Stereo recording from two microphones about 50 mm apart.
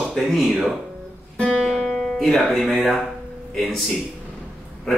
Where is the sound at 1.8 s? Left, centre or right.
Centre.